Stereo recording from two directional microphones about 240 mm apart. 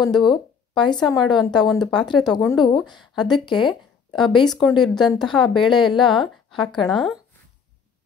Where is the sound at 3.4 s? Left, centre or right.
Centre.